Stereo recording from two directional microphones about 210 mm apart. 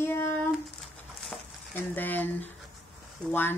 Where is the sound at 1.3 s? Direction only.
10° left (ahead or behind).